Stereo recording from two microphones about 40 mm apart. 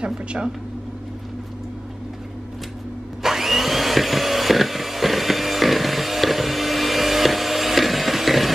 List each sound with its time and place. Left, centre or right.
0.0 s speech: right
3.2 s vacuum cleaner: centre